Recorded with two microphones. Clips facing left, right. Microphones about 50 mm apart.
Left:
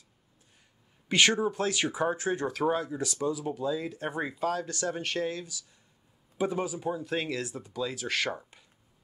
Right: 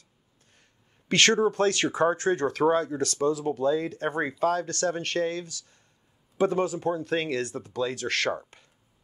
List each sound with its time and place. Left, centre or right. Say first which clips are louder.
1.0 s speech: right 3 dB; centre
2.9 s speech: right 5 dB; centre
3.3 s speech: right 6 dB; centre